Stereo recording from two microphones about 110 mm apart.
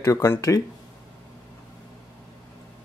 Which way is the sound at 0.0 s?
25° left (ahead or behind).